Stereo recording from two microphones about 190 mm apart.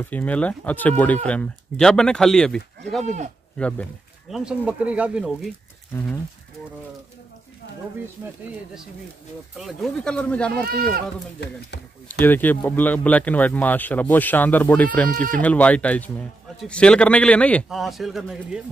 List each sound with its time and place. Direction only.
0.0 s speech: 10° left (ahead or behind)
4.3 s a man's voice: 5° right (ahead or behind)
5.9 s speech: 10° left (ahead or behind)
9.6 s a man's voice: centre (ahead or behind)
10.6 s speech: 55° right (ahead or behind)
11.3 s speech: 65° left (ahead or behind)
12.1 s speech: 10° left (ahead or behind)
15.1 s speech: 45° right (ahead or behind)
15.4 s a man's voice: 5° left (ahead or behind)